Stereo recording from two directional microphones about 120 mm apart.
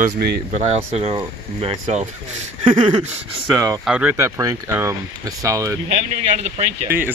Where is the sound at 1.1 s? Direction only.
45° right (ahead or behind).